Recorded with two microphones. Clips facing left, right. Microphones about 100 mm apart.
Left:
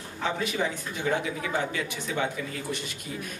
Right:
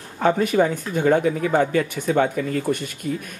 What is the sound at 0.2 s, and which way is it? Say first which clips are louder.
Speech: right 10 dB; 50° right (ahead or behind).